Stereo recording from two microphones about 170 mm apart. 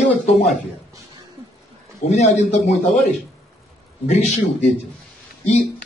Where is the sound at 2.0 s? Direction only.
40° left (ahead or behind).